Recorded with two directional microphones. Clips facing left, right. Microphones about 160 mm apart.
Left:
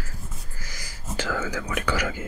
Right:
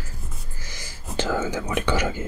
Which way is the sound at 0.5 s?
25° right (ahead or behind).